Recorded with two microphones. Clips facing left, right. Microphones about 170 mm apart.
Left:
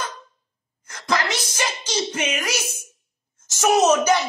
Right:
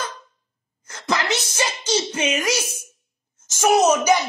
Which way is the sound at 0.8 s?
25° right (ahead or behind).